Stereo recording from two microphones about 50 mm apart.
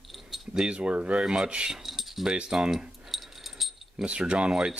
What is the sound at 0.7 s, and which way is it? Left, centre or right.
Speech, right.